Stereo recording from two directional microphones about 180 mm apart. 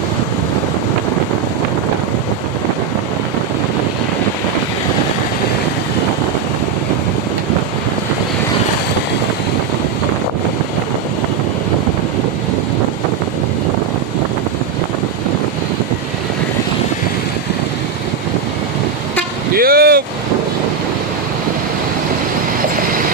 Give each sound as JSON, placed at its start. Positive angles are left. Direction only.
{"t": 19.5, "sound": "vehicle", "side_deg": -55}